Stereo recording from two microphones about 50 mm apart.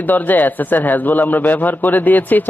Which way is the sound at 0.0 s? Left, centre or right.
Left.